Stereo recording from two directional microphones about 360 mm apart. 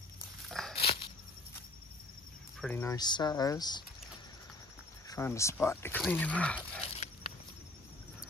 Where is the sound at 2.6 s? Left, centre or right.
Centre.